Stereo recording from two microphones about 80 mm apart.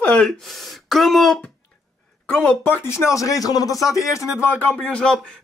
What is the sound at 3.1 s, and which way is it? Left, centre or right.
Speech, left.